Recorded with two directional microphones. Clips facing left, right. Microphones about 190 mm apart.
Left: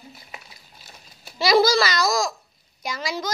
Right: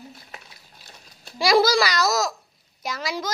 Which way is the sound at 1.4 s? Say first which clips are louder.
Even; 10° right (ahead or behind).